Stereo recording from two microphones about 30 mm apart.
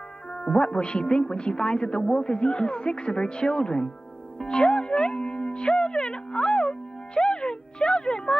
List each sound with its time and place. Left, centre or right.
0.3 s a woman's voice: left